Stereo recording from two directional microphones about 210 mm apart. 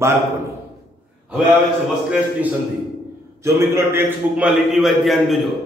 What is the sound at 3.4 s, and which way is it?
A man's voice, 15° right (ahead or behind).